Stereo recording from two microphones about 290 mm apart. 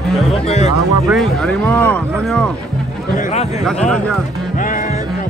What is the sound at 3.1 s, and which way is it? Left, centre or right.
Speech, left.